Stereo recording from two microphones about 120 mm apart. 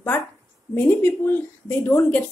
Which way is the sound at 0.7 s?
15° left (ahead or behind).